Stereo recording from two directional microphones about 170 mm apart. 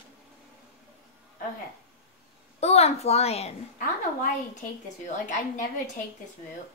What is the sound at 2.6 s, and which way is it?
Speech, 40° left (ahead or behind).